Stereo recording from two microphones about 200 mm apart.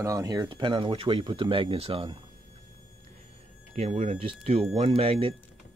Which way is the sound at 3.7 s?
30° right (ahead or behind).